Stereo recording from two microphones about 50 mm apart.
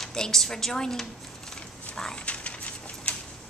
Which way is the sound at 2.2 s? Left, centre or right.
Left.